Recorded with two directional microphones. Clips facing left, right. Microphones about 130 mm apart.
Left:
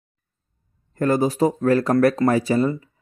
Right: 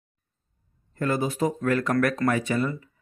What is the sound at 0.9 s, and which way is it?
Speech, 40° left (ahead or behind).